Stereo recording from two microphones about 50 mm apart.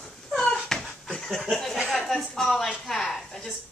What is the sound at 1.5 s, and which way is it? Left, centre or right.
Speech, centre.